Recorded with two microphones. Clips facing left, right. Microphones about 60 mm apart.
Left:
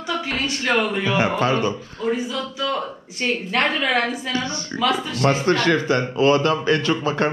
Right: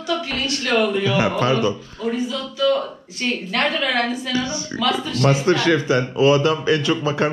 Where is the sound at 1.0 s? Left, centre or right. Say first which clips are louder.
Right 1 dB; left.